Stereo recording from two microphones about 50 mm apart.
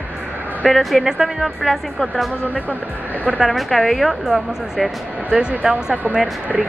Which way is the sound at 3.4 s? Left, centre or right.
Centre.